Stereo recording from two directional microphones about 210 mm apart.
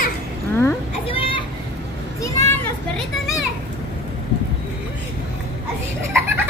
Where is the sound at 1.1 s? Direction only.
25° left (ahead or behind).